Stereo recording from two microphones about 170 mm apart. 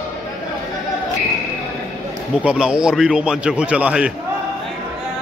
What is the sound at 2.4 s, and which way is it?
A man's voice, 5° right (ahead or behind).